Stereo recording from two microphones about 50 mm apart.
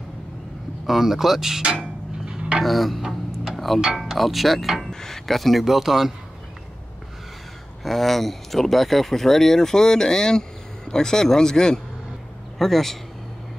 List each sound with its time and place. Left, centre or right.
0.8 s speech: centre
2.2 s a sound: centre
2.6 s speech: centre
7.8 s a man's voice: centre